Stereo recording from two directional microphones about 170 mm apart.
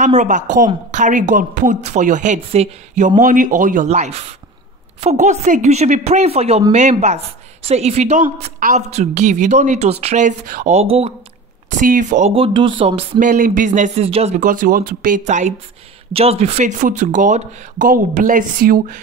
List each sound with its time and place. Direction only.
0.0 s speech: 45° right (ahead or behind)
3.2 s speech: 50° right (ahead or behind); by 11.1 s 35° right (ahead or behind)
11.7 s speech: 50° right (ahead or behind)
13.2 s speech: 50° right (ahead or behind)
14.4 s speech: 50° right (ahead or behind)
16.1 s speech: 35° right (ahead or behind); by 18.9 s 55° right (ahead or behind)